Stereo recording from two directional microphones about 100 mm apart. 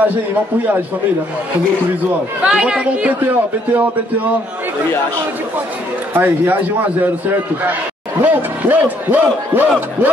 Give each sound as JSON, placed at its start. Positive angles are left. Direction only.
{"t": 2.4, "sound": "a man's voice", "side_deg": -10}
{"t": 6.1, "sound": "speech", "side_deg": -20}